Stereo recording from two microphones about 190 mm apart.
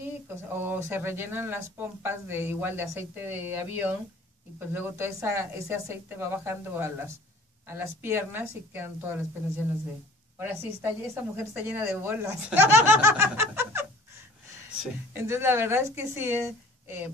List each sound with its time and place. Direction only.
0.0 s speech: 10° right (ahead or behind)
10.4 s speech: 10° right (ahead or behind)
15.1 s speech: 15° right (ahead or behind)